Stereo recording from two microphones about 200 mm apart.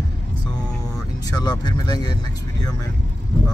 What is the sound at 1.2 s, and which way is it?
Speech, 20° left (ahead or behind).